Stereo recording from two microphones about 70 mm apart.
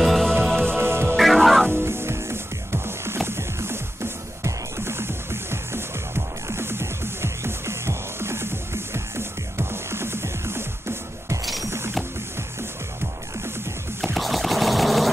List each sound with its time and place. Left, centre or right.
0.0 s music: centre
0.7 s music: right
1.1 s music: centre
1.7 s music: right
14.0 s a sound: centre